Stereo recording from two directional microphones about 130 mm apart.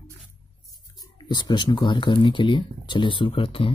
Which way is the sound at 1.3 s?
35° left (ahead or behind).